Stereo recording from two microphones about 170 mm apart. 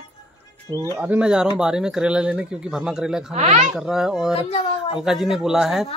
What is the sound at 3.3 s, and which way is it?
Speech, 40° right (ahead or behind).